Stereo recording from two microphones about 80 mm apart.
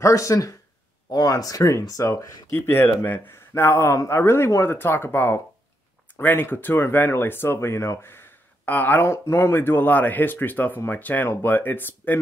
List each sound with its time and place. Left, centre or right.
0.0 s speech: left
2.5 s speech: left
9.0 s speech: left